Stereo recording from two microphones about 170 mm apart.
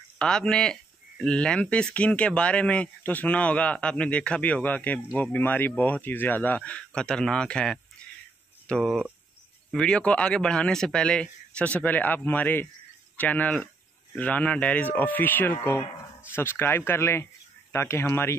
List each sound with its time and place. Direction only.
0.2 s speech: 5° left (ahead or behind)